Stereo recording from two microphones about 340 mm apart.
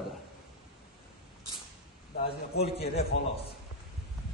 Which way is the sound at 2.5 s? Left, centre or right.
Left.